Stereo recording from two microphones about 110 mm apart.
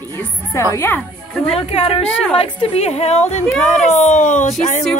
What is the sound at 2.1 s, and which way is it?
Speech, 5° left (ahead or behind).